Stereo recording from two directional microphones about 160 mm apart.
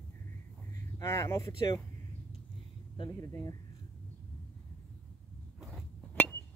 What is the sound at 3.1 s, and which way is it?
Speech, 20° left (ahead or behind).